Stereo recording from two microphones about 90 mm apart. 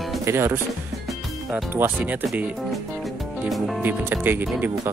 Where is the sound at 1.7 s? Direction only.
20° right (ahead or behind).